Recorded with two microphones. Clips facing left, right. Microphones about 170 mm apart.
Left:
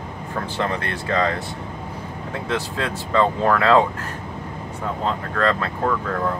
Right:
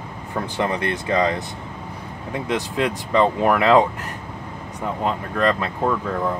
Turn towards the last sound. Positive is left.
turn(degrees=-15)  # may be behind; listen again after turning